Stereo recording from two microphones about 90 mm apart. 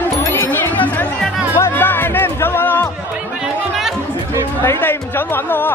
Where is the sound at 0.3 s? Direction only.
20° left (ahead or behind).